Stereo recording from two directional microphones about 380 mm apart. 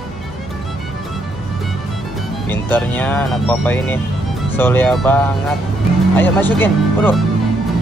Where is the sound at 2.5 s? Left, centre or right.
Centre.